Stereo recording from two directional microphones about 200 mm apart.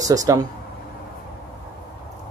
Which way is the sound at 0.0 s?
15° right (ahead or behind).